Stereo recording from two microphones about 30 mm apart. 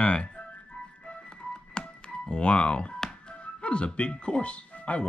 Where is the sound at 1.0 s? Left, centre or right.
Left.